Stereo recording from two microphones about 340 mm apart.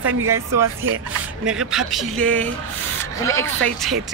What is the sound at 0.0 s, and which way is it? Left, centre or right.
Speech, right.